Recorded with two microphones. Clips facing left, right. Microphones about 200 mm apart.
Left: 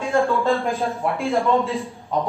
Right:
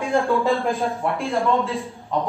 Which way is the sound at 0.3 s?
15° right (ahead or behind).